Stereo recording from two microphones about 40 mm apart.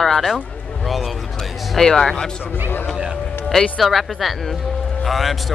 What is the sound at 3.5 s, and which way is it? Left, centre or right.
A man's voice, centre.